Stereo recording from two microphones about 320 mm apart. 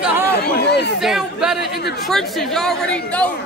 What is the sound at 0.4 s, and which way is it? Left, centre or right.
Chatter, left.